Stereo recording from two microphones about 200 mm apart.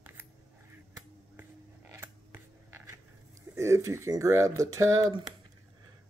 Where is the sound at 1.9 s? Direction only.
10° right (ahead or behind).